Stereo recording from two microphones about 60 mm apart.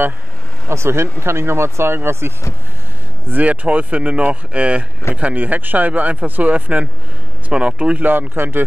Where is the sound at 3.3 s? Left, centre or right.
Right.